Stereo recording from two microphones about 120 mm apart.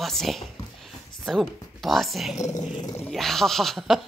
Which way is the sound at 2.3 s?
30° left (ahead or behind).